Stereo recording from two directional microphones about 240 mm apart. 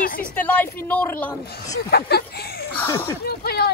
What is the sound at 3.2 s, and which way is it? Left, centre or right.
Speech, left.